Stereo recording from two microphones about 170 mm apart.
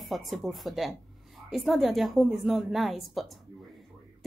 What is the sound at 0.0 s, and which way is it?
A woman's voice, centre (ahead or behind).